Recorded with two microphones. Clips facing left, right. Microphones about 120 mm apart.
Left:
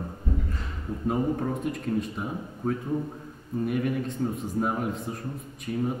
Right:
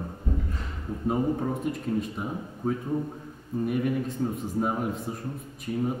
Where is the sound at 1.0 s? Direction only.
5° right (ahead or behind).